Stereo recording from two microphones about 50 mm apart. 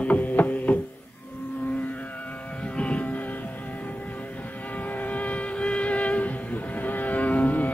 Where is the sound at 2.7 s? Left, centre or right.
Left.